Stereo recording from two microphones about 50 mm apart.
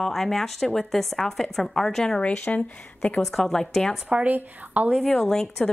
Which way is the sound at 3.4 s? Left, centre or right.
Centre.